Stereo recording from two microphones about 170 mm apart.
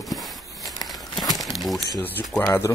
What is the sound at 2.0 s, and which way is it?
Speech, 10° left (ahead or behind).